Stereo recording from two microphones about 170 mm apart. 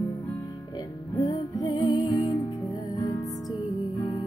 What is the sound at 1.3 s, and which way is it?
Music, 20° left (ahead or behind).